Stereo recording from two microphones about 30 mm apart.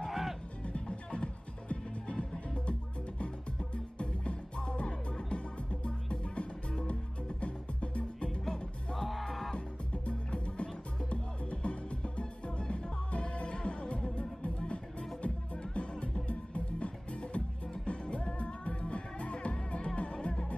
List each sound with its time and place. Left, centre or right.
0.1 s music: centre
0.7 s music: left
3.7 s music: left
6.9 s music: left
8.9 s music: centre
10.0 s music: left
15.2 s music: left